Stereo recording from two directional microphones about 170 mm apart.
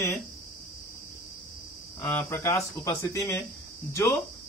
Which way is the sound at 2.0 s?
10° left (ahead or behind).